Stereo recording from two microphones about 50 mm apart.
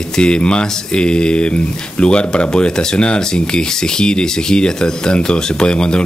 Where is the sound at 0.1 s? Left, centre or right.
Centre.